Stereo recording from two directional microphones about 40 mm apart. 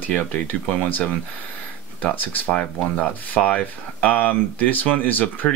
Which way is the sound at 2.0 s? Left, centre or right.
Left.